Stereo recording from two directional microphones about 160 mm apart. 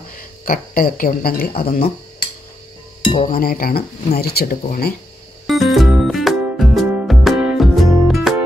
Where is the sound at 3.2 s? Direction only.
65° left (ahead or behind).